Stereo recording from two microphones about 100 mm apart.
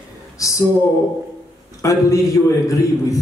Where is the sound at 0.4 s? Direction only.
30° left (ahead or behind).